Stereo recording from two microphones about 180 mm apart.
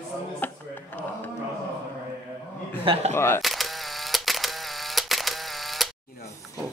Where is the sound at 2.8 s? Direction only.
35° right (ahead or behind).